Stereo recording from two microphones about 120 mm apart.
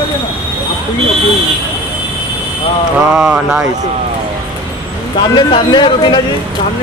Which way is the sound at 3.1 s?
10° right (ahead or behind).